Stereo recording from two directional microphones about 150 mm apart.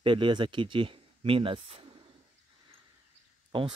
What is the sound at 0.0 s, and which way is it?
Speech, 35° right (ahead or behind).